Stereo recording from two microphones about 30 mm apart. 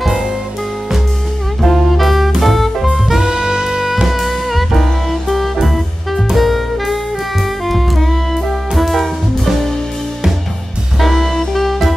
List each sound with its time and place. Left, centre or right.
1.6 s saxophone: centre
2.4 s music: centre
3.2 s saxophone: right
4.1 s music: centre
11.0 s music: centre